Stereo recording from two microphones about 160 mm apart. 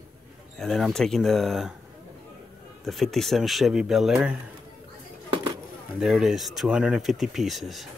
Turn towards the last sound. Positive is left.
turn(degrees=0)  # may be behind; listen again after turning